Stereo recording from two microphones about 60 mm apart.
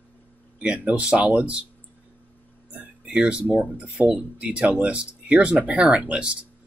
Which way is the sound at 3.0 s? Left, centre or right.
Centre.